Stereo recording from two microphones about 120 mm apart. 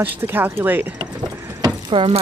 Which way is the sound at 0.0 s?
15° right (ahead or behind).